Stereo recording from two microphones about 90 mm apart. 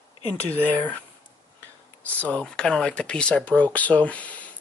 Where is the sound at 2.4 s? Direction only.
10° left (ahead or behind).